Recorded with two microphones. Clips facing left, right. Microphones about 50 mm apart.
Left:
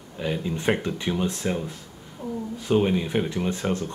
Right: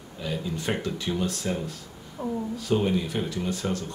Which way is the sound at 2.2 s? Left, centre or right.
Right.